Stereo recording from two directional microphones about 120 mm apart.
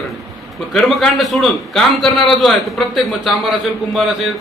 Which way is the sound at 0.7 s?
Centre (ahead or behind).